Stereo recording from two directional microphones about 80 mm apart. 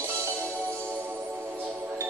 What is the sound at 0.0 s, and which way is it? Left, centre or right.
Music, right.